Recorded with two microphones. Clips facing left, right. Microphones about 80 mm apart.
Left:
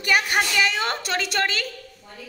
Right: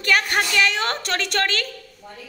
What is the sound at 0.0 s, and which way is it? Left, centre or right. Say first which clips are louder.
A woman's voice: right 1 dB; centre.